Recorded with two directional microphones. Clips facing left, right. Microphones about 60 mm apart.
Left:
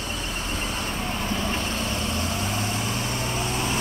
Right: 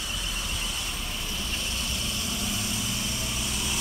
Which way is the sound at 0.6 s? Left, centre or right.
Left.